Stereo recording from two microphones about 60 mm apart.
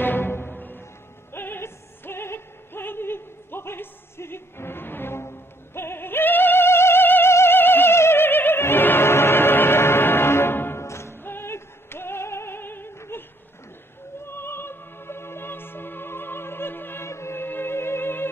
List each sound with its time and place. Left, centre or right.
0.0 s music: left
14.2 s opera: left